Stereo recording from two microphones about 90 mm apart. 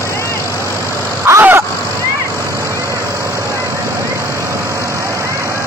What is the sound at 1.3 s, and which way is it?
Vehicle, 30° right (ahead or behind).